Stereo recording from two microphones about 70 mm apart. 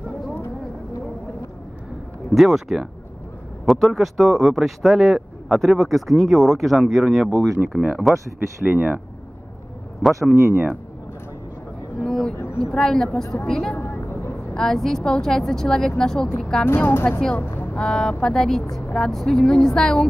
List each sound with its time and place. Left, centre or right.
2.3 s speech: centre
7.6 s speech: right
8.1 s speech: centre
8.6 s speech: right
10.3 s speech: right
12.0 s a sound: centre
12.5 s a woman's voice: centre
13.7 s vehicle: left
14.5 s a woman's voice: centre
16.6 s speech: left
17.4 s vehicle: left
17.7 s a woman's voice: centre